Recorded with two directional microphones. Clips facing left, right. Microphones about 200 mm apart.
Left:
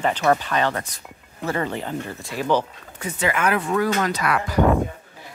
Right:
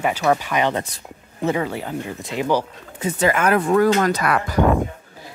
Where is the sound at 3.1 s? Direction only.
40° right (ahead or behind).